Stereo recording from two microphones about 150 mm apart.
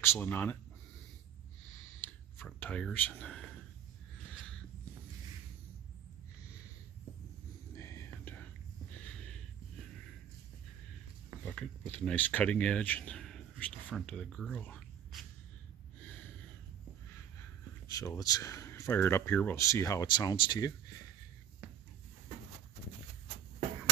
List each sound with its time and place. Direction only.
0.0 s speech: 15° left (ahead or behind)
2.0 s a sound: 15° left (ahead or behind)
7.7 s whispering: 20° left (ahead or behind)
11.4 s speech: 5° left (ahead or behind)
17.8 s speech: 20° left (ahead or behind)